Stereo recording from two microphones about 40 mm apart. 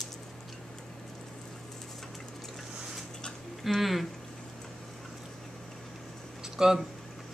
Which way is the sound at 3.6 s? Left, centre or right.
Centre.